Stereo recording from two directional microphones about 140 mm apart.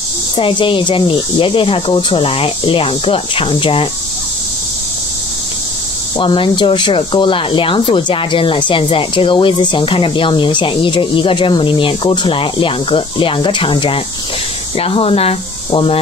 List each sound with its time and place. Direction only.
0.4 s speech: 40° left (ahead or behind)
6.1 s speech: 35° left (ahead or behind)